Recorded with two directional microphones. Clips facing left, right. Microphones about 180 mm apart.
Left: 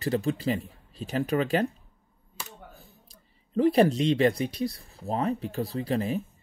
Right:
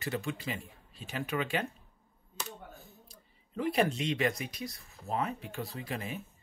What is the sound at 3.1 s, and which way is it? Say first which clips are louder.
Speech: left 11 dB; 35° left (ahead or behind).